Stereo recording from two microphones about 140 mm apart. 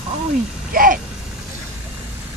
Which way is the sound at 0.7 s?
90° right.